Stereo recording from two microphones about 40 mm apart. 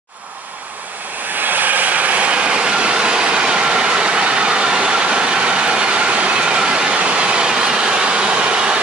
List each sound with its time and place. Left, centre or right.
1.4 s vehicle: right